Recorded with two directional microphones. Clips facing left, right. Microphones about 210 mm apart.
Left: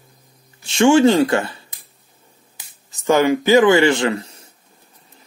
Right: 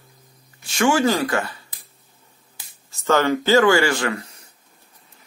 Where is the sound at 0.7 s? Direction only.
25° left (ahead or behind).